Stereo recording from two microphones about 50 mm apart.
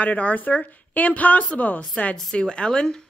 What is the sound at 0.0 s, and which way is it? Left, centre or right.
A woman's voice, left.